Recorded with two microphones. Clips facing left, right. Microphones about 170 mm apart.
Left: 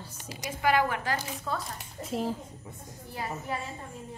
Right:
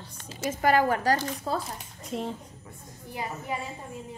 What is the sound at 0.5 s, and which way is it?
A woman's voice, 40° right (ahead or behind).